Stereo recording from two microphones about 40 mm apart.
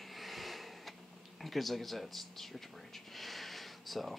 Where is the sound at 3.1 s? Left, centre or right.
Centre.